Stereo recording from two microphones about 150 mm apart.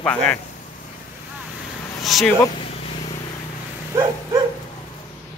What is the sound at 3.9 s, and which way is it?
Dog, 20° right (ahead or behind).